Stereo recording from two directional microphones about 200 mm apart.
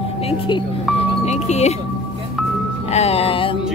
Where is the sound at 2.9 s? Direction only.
30° left (ahead or behind).